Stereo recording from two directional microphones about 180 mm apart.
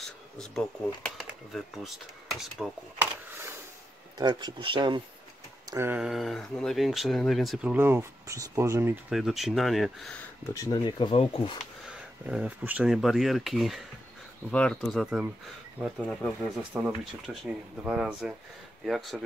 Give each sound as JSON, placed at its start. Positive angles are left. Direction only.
{"t": 0.0, "sound": "speech", "side_deg": 0}
{"t": 3.3, "sound": "a sound", "side_deg": -10}
{"t": 4.2, "sound": "speech", "side_deg": -25}
{"t": 5.7, "sound": "speech", "side_deg": -15}
{"t": 9.1, "sound": "speech", "side_deg": 0}
{"t": 10.5, "sound": "speech", "side_deg": 20}
{"t": 11.9, "sound": "speech", "side_deg": -5}